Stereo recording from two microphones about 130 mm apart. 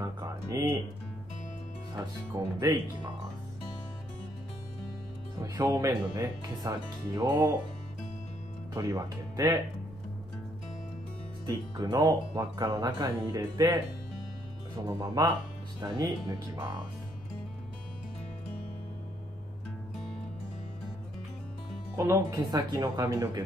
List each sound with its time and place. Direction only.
0.0 s speech: 25° right (ahead or behind)
2.3 s speech: 30° right (ahead or behind)
5.4 s speech: 25° right (ahead or behind)
8.7 s speech: 20° right (ahead or behind)
11.4 s speech: 25° right (ahead or behind)
14.9 s speech: 30° right (ahead or behind)
21.9 s speech: 20° right (ahead or behind)